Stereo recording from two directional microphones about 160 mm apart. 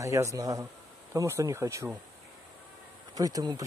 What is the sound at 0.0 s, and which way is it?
A man's voice, 20° right (ahead or behind).